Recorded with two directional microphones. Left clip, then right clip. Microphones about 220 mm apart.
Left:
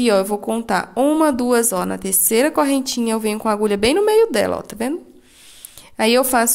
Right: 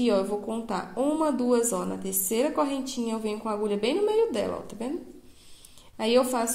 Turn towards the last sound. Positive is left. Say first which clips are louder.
# left 8 dB
turn(degrees=40)  # may be behind; listen again after turning